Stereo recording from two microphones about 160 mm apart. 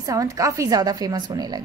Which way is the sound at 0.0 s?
20° right (ahead or behind).